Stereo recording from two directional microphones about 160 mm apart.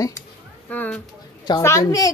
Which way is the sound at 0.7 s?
10° left (ahead or behind).